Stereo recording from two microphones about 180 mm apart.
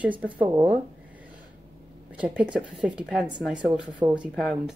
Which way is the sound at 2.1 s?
5° right (ahead or behind).